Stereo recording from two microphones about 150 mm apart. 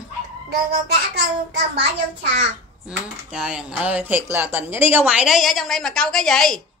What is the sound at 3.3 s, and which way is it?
A woman's voice, 5° right (ahead or behind).